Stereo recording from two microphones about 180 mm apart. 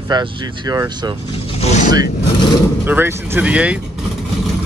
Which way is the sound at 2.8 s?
10° right (ahead or behind).